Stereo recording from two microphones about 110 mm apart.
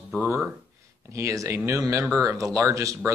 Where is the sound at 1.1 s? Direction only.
30° right (ahead or behind).